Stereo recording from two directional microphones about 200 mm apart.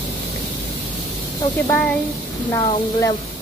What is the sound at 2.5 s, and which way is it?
Speech, 20° left (ahead or behind).